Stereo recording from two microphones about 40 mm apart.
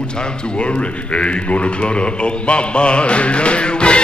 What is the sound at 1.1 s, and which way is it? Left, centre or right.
Speech, left.